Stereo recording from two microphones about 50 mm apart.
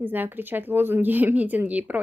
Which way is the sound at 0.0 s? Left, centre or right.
Right.